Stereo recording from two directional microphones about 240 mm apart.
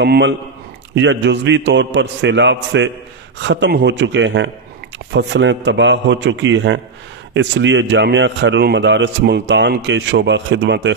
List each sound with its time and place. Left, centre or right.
0.0 s a man's voice: right